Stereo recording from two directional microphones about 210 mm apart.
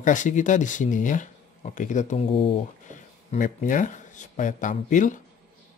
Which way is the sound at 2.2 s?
25° left (ahead or behind).